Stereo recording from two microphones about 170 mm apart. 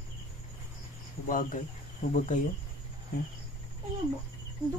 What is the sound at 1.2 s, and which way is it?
Speech, 50° left (ahead or behind).